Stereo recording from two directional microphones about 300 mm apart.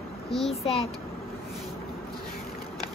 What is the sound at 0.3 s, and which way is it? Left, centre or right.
Speech, centre.